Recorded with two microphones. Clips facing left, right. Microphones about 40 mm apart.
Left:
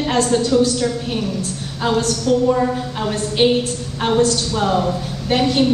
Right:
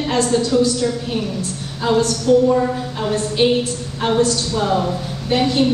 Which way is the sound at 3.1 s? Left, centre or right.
Left.